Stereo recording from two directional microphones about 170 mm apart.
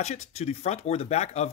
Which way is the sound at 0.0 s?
40° left (ahead or behind).